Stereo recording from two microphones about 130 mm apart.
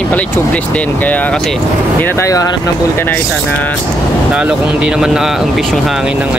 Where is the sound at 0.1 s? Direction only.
15° left (ahead or behind).